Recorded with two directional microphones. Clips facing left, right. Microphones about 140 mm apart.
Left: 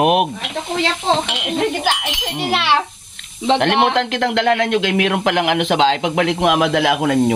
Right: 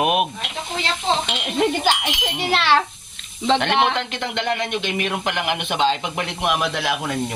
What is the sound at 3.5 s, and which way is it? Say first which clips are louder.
Speech: left 4 dB; 60° left (ahead or behind).